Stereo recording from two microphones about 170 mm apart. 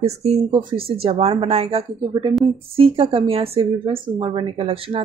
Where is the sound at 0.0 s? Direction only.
40° right (ahead or behind).